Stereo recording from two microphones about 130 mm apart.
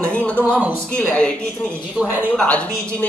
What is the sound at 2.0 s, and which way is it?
Speech, 15° right (ahead or behind).